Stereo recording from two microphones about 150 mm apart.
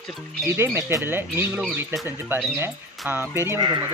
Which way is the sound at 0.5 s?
15° right (ahead or behind).